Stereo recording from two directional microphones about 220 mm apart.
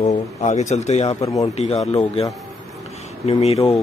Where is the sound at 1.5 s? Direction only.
30° left (ahead or behind).